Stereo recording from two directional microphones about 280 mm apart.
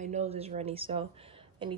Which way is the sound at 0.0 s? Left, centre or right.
Right.